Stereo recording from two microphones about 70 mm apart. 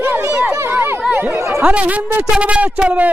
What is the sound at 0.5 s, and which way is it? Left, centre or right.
Chatter, right.